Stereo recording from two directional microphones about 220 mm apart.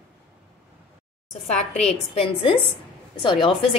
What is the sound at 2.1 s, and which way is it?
Speech, 25° left (ahead or behind).